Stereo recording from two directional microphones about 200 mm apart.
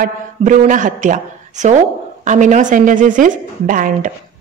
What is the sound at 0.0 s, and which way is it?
A woman's voice, 40° right (ahead or behind).